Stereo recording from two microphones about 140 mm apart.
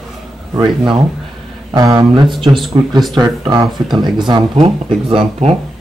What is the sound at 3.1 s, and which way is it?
Speech, 30° right (ahead or behind).